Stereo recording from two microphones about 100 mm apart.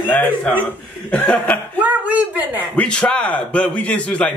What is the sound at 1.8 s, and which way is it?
Speech, 15° right (ahead or behind).